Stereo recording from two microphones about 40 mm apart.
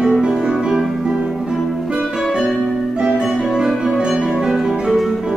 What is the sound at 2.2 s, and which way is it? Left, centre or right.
Music, centre.